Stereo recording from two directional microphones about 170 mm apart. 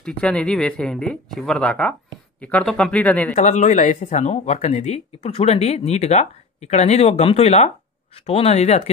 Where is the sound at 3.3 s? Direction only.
45° left (ahead or behind).